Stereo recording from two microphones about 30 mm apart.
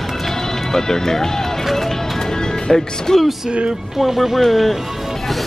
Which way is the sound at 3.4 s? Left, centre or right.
Right.